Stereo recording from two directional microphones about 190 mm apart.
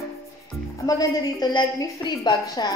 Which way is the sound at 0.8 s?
20° left (ahead or behind).